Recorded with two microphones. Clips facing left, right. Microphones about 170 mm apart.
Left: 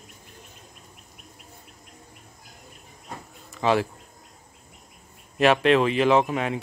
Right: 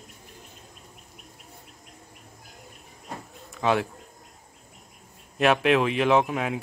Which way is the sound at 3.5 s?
Centre (ahead or behind).